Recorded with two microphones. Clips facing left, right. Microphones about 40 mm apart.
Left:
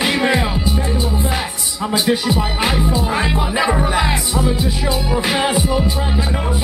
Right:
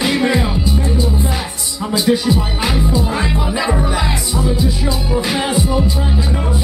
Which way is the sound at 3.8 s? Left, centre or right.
Left.